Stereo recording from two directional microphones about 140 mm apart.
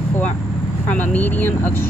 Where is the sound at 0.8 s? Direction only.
10° left (ahead or behind).